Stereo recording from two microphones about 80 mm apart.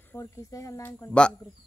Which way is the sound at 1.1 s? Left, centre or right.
Centre.